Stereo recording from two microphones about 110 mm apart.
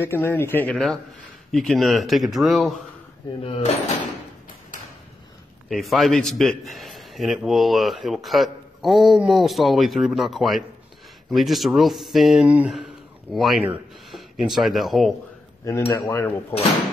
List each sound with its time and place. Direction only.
0.0 s speech: 20° left (ahead or behind)
1.5 s a man's voice: centre (ahead or behind)
3.4 s speech: 65° left (ahead or behind)
5.7 s a man's voice: centre (ahead or behind)
12.4 s speech: 15° right (ahead or behind)
12.7 s a sound: centre (ahead or behind)
14.1 s speech: centre (ahead or behind)
15.9 s speech: 25° left (ahead or behind)